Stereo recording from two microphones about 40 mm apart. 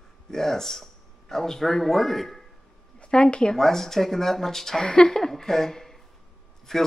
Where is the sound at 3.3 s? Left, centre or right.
Left.